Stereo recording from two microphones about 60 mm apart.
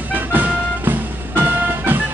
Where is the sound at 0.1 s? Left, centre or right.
Right.